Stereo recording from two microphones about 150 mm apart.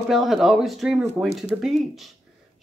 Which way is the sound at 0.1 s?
Centre (ahead or behind).